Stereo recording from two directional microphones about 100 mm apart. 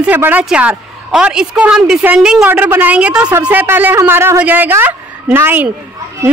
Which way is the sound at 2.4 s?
15° right (ahead or behind).